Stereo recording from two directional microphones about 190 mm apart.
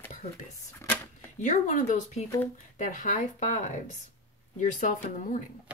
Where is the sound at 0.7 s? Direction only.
10° left (ahead or behind).